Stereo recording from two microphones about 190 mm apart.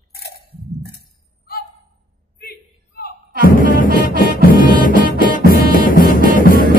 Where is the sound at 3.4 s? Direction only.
50° left (ahead or behind).